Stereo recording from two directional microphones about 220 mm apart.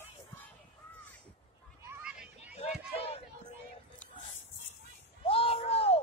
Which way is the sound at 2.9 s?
25° left (ahead or behind).